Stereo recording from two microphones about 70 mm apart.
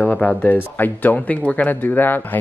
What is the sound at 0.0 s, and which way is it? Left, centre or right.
Speech, centre.